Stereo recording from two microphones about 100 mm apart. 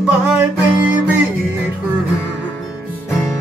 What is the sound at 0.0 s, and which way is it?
Music, 10° right (ahead or behind).